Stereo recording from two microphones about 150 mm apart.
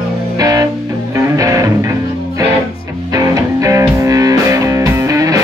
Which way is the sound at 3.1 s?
25° right (ahead or behind).